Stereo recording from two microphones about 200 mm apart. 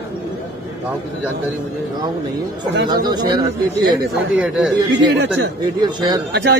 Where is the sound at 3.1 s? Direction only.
20° right (ahead or behind).